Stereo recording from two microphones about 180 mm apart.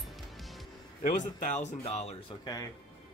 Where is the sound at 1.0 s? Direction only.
40° left (ahead or behind).